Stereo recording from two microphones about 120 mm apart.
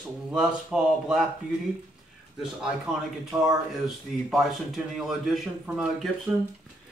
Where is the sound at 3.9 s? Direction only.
Centre (ahead or behind).